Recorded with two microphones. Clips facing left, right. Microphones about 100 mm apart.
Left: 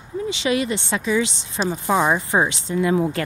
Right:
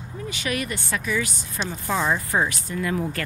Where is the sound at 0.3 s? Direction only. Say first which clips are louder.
Left 6 dB; 25° left (ahead or behind).